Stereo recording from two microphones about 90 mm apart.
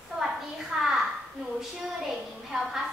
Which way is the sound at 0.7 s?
10° right (ahead or behind).